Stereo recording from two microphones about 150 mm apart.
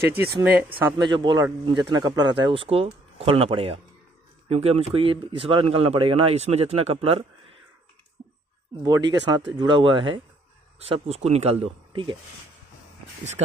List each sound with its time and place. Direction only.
0.4 s speech: 10° right (ahead or behind)
0.9 s speech: 30° right (ahead or behind)
8.8 s speech: 30° right (ahead or behind)